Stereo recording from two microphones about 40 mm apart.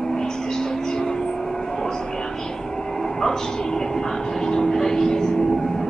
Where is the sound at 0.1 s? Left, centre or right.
Centre.